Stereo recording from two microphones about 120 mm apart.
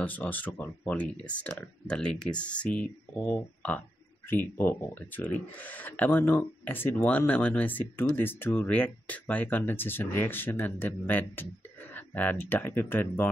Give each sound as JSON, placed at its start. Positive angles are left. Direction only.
{"t": 0.0, "sound": "speech", "side_deg": 15}